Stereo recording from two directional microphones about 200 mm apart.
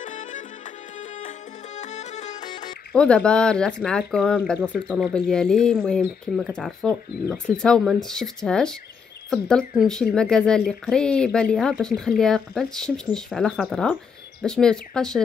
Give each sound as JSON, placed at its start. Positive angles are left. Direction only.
{"t": 0.0, "sound": "music", "side_deg": 40}
{"t": 1.8, "sound": "music", "side_deg": 35}
{"t": 2.4, "sound": "music", "side_deg": 20}
{"t": 2.9, "sound": "speech", "side_deg": 5}